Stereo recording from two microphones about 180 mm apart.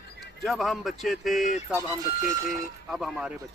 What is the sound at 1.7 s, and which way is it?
Speech, 20° right (ahead or behind).